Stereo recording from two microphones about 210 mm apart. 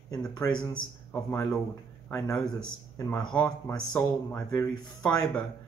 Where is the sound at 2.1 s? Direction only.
15° left (ahead or behind).